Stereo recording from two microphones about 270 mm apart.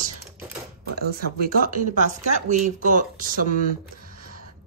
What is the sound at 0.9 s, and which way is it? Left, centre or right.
Speech, right.